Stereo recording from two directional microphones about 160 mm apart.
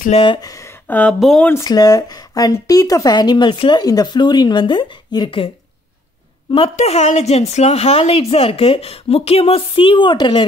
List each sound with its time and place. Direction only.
0.1 s speech: 30° left (ahead or behind); by 1.5 s 5° left (ahead or behind)
1.5 s speech: 20° left (ahead or behind)
6.5 s a woman's voice: 40° left (ahead or behind)